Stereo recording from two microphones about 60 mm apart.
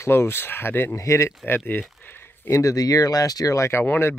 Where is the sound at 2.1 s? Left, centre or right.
Left.